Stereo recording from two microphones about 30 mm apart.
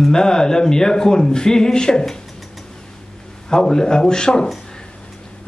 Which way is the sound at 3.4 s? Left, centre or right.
Left.